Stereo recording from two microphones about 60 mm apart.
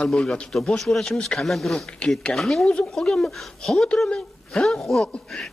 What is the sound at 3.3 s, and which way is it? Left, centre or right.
Speech, centre.